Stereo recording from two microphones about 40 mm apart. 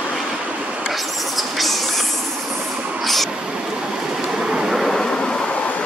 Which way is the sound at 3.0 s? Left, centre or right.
Centre.